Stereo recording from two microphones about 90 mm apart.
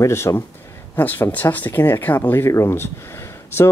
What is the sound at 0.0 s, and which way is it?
Speech, 30° left (ahead or behind).